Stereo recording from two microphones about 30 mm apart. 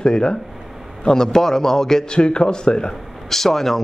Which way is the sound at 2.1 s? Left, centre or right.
Left.